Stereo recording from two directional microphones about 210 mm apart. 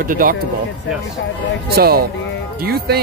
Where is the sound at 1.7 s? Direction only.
45° right (ahead or behind).